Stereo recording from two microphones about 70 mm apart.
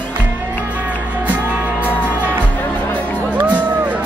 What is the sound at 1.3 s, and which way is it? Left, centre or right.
Music, right.